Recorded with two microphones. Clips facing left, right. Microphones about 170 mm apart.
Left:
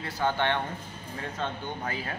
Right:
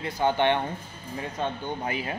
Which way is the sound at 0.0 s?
20° right (ahead or behind).